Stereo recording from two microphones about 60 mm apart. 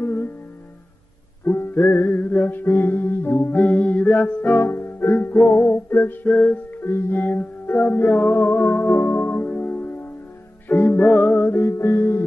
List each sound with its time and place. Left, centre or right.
0.0 s music: left
1.4 s music: left
4.5 s music: left
6.2 s music: left
6.8 s music: left